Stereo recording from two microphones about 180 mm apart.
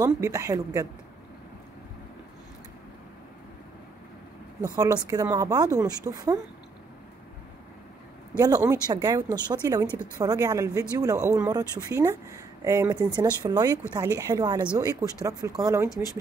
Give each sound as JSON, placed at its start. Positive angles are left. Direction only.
{"t": 0.0, "sound": "speech", "side_deg": -20}
{"t": 4.7, "sound": "a woman's voice", "side_deg": -20}
{"t": 8.4, "sound": "a woman's voice", "side_deg": -20}